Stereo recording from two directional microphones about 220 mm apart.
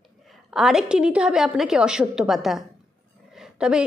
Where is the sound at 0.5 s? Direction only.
Centre (ahead or behind).